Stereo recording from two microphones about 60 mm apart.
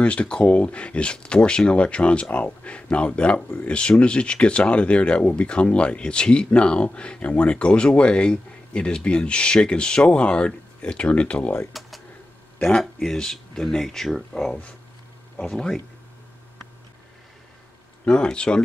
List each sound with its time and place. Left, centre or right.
0.0 s speech: centre
12.6 s speech: centre
18.0 s speech: centre